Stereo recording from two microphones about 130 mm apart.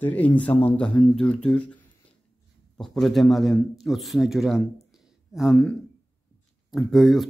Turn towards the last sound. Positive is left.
turn(degrees=0)  # may be behind; listen again after turning